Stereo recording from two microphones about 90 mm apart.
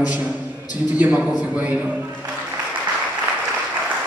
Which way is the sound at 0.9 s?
15° right (ahead or behind).